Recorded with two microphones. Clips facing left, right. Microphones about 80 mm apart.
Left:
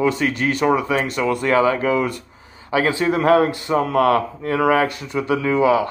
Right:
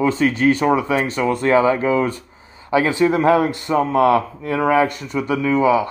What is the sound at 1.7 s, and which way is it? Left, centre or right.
Speech, right.